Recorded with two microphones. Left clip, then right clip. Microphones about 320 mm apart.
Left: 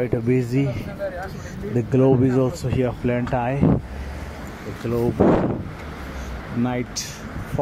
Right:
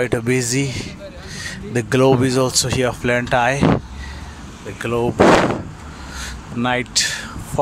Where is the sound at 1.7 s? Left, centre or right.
Right.